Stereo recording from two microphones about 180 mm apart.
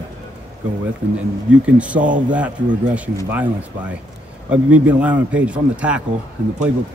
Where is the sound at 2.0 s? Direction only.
45° right (ahead or behind).